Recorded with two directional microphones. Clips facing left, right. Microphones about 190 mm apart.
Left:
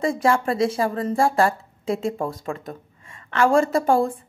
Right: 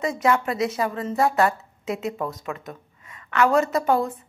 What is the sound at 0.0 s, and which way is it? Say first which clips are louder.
Speech: left 2 dB; 30° left (ahead or behind).